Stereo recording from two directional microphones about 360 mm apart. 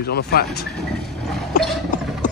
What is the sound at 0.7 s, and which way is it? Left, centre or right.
Vehicle, centre.